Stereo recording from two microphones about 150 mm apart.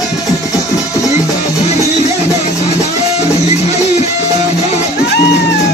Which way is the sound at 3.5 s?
50° left (ahead or behind).